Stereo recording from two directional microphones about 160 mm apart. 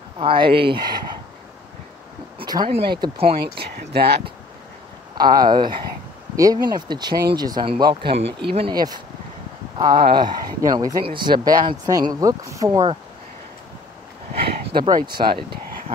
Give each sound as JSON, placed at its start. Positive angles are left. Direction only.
{"t": 0.2, "sound": "speech", "side_deg": -35}
{"t": 2.3, "sound": "a sound", "side_deg": -30}
{"t": 2.7, "sound": "speech", "side_deg": -35}
{"t": 3.5, "sound": "speech", "side_deg": -90}
{"t": 5.1, "sound": "speech", "side_deg": -25}
{"t": 8.1, "sound": "speech", "side_deg": -90}
{"t": 8.5, "sound": "speech", "side_deg": -30}
{"t": 14.9, "sound": "speech", "side_deg": -30}